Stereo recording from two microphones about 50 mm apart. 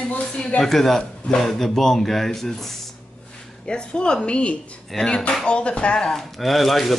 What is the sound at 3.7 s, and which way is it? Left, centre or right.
Speech, centre.